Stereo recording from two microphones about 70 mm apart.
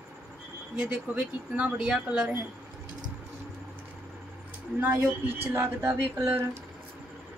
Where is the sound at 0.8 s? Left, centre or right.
Centre.